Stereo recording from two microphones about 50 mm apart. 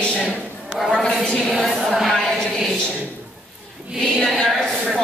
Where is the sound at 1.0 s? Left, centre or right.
Centre.